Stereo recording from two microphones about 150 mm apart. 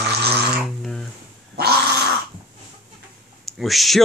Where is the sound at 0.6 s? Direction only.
Centre (ahead or behind).